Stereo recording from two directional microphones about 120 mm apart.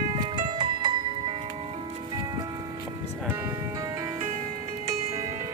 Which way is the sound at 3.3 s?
25° right (ahead or behind).